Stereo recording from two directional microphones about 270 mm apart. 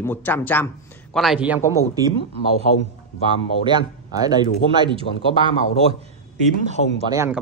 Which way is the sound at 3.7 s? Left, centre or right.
Centre.